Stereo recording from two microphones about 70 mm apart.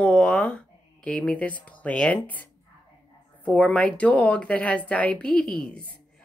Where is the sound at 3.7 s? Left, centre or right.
Centre.